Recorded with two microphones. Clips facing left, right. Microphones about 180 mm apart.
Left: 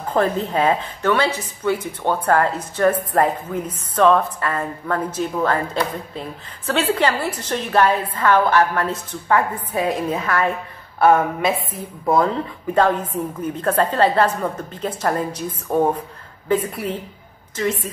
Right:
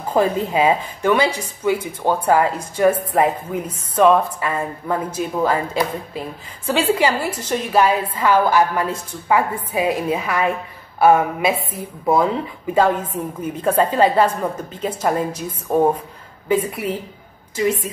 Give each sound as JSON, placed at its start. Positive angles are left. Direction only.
{"t": 0.1, "sound": "speech", "side_deg": -10}